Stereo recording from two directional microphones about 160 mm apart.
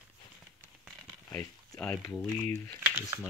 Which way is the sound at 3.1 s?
20° right (ahead or behind).